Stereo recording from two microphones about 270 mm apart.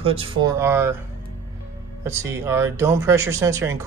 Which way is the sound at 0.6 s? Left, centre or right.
Centre.